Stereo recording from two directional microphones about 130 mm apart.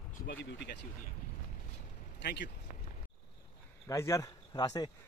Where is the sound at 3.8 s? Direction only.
25° left (ahead or behind).